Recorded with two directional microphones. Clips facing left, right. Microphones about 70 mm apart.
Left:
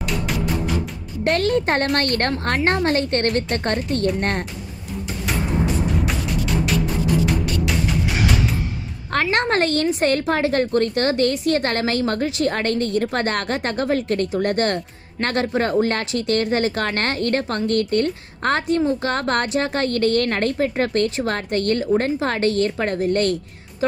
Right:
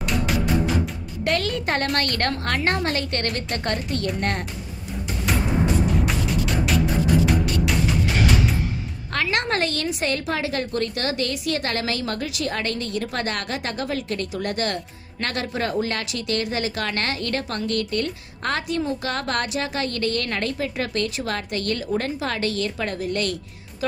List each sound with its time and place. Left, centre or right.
1.2 s a woman's voice: left
6.0 s music: centre
9.1 s a woman's voice: left